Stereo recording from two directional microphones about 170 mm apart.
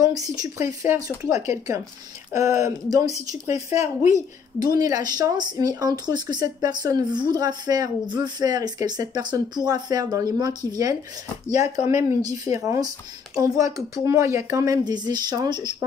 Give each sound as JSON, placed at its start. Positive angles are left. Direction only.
{"t": 0.0, "sound": "a woman's voice", "side_deg": -20}
{"t": 12.0, "sound": "a woman's voice", "side_deg": -20}